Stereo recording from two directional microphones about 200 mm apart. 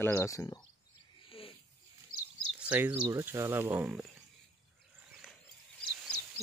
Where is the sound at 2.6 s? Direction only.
5° right (ahead or behind).